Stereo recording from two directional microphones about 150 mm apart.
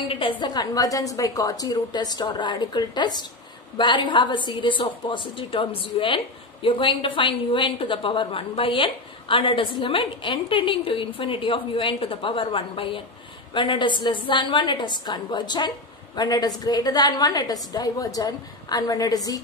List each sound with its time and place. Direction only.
0.1 s a woman's voice: 35° left (ahead or behind)